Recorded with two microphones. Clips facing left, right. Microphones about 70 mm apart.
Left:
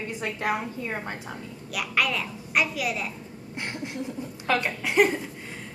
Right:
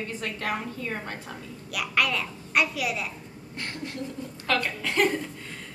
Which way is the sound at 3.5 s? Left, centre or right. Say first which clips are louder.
Left 2 dB; centre.